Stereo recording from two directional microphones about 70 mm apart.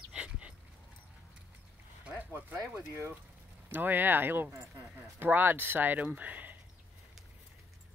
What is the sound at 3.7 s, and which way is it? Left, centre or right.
Speech, right.